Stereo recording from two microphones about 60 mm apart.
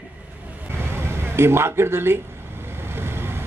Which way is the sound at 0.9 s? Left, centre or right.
Right.